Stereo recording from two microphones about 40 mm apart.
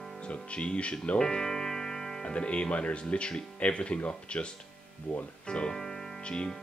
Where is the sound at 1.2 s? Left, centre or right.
Centre.